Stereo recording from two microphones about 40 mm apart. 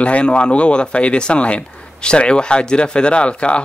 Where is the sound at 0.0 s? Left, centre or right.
Left.